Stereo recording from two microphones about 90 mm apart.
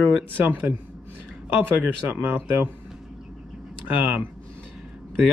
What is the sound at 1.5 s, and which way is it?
Speech, 20° right (ahead or behind).